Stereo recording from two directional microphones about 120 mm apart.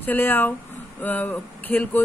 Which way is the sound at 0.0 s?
15° left (ahead or behind).